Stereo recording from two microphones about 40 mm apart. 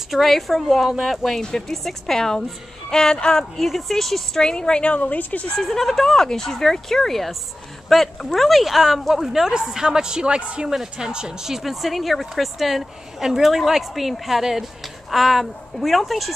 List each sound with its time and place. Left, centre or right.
0.1 s a woman's voice: centre; by 3.4 s left
3.5 s a woman's voice: centre
4.4 s a woman's voice: centre
4.8 s a woman's voice: left
5.6 s a woman's voice: centre; by 10.7 s right
10.7 s a woman's voice: centre